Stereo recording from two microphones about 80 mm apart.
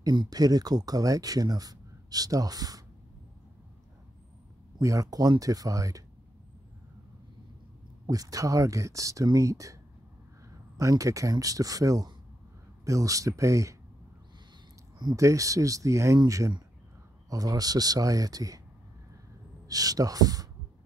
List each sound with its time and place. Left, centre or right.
0.1 s speech: right
4.7 s speech: right
8.1 s speech: right
10.8 s speech: right
15.1 s speech: right
19.7 s speech: right